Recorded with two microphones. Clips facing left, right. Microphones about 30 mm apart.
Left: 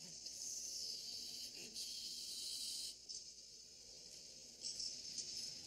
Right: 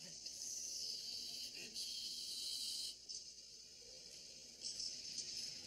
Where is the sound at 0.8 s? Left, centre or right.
Right.